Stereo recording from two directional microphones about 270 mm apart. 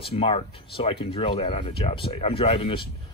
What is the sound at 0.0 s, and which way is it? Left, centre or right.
Speech, left.